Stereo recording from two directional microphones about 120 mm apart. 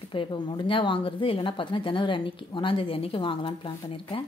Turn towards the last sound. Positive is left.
turn(degrees=45)  # may be behind; listen again after turning